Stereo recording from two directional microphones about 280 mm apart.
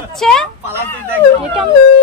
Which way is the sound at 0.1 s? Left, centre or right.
Centre.